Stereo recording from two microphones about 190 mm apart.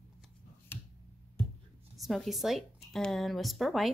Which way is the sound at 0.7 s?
10° left (ahead or behind).